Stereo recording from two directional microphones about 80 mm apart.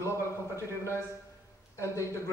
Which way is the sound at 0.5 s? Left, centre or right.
Left.